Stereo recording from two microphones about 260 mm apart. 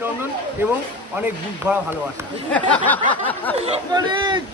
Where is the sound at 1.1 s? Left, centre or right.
Centre.